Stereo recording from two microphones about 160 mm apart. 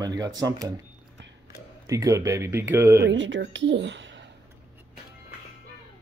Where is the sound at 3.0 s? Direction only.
90° right.